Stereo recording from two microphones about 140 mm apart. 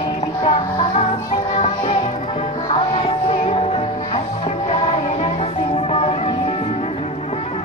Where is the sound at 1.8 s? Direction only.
40° left (ahead or behind).